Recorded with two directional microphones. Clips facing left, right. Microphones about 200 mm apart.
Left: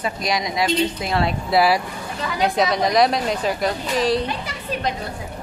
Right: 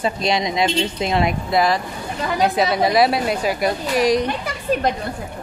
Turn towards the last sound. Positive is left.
turn(degrees=-50)  # may be behind; listen again after turning